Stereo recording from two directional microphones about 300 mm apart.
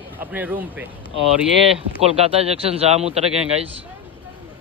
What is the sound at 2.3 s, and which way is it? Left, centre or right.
Speech, centre.